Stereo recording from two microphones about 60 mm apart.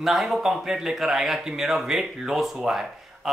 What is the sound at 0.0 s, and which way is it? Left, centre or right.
Speech, centre.